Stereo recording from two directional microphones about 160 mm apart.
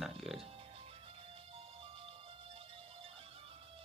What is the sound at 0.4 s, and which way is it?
Music, 35° right (ahead or behind).